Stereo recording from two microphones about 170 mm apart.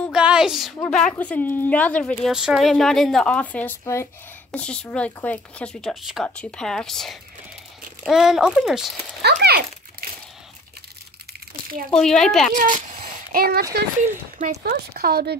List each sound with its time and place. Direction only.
0.1 s a sound: 5° right (ahead or behind)
0.8 s speech: 10° left (ahead or behind)
2.3 s speech: 5° right (ahead or behind); by 4.1 s 15° left (ahead or behind)
4.5 s speech: 5° left (ahead or behind)
9.2 s a child's voice: 70° right (ahead or behind)
11.9 s speech: 5° left (ahead or behind)
12.5 s speech: 50° right (ahead or behind)
14.0 s speech: 50° right (ahead or behind)
14.6 s speech: 60° right (ahead or behind)